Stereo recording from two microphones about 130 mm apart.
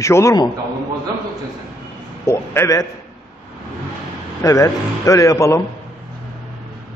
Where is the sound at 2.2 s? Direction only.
20° left (ahead or behind).